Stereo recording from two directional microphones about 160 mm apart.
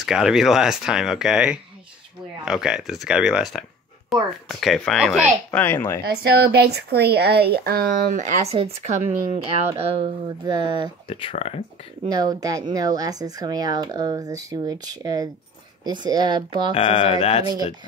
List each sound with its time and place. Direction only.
0.0 s speech: 5° right (ahead or behind)
5.5 s speech: 10° left (ahead or behind)
6.0 s speech: 90° right; by 8.4 s 60° right (ahead or behind)
8.5 s speech: 40° right (ahead or behind)
10.4 s speech: 25° right (ahead or behind)
11.1 s speech: 35° left (ahead or behind)
12.1 s speech: 25° right (ahead or behind)
16.7 s speech: 35° left (ahead or behind)